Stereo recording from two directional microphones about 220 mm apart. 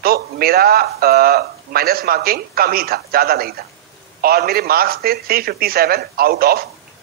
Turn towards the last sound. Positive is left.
turn(degrees=-45)  # may be behind; listen again after turning